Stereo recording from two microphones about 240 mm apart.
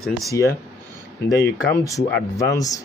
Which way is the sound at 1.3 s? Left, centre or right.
Left.